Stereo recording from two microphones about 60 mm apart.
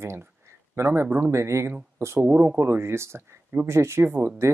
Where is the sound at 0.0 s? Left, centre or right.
Right.